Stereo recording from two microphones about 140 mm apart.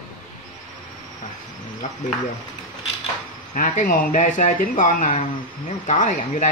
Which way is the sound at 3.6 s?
80° left.